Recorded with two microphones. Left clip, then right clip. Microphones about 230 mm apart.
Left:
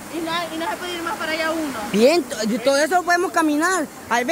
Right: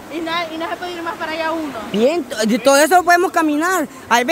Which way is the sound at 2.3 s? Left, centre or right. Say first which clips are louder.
Right 6 dB; right.